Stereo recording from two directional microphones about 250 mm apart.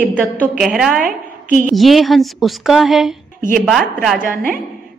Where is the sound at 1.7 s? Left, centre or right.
Centre.